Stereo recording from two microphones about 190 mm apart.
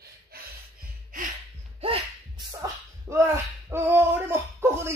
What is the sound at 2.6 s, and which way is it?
Speech, 15° right (ahead or behind).